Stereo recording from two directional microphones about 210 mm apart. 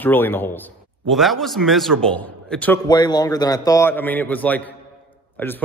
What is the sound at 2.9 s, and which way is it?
A man's voice, 20° left (ahead or behind).